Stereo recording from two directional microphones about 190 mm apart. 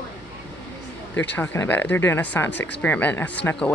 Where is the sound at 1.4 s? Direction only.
10° left (ahead or behind).